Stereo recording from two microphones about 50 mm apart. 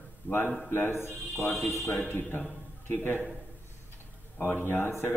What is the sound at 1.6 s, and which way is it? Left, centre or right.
Speech, left.